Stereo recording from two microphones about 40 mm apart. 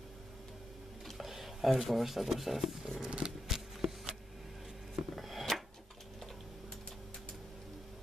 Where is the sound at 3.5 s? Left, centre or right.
Centre.